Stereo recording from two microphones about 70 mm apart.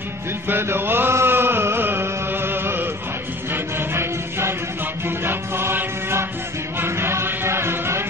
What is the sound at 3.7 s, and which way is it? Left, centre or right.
Music, right.